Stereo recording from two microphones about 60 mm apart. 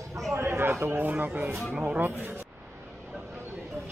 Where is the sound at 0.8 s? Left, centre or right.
Right.